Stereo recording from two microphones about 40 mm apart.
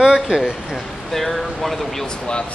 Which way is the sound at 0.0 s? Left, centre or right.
Centre.